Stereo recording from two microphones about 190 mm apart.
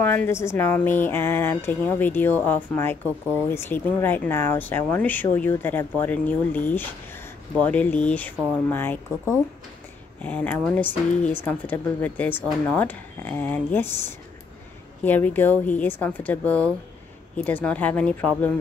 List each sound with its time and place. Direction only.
0.0 s speech: 10° left (ahead or behind)